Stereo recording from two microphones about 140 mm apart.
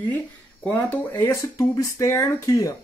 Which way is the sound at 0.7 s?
15° left (ahead or behind).